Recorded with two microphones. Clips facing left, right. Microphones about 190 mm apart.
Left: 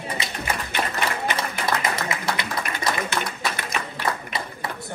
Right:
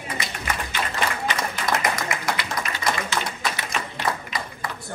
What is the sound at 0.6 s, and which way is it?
Applause, 55° left (ahead or behind).